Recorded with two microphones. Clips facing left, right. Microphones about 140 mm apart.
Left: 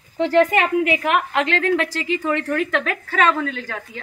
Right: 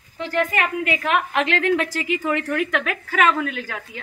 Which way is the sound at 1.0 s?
Centre (ahead or behind).